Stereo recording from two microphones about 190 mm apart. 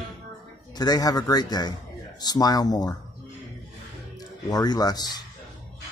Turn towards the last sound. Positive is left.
turn(degrees=20)  # may be behind; listen again after turning